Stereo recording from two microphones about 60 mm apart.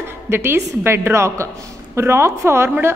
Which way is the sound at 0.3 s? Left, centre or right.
Right.